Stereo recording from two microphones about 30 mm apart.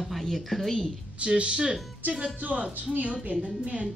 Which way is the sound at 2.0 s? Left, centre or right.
Right.